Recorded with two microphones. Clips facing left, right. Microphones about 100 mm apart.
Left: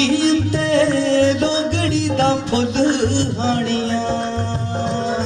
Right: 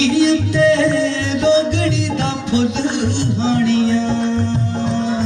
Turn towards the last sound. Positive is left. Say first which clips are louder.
# right 3 dB
turn(degrees=40)  # may be behind; listen again after turning